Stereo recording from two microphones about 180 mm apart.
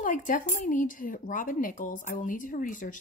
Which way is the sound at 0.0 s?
45° left (ahead or behind).